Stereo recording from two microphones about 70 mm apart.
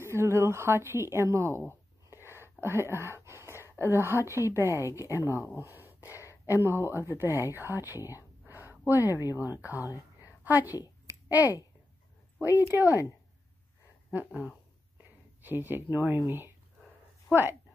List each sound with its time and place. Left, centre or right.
0.0 s a woman's voice: right
2.1 s a sound: right
3.7 s a woman's voice: right
8.0 s speech: left
8.5 s a sound: right
9.4 s speech: right
9.8 s a sound: left
10.4 s a woman's voice: right
14.1 s a woman's voice: right